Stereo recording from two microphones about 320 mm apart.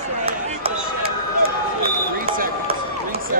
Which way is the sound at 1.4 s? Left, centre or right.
Right.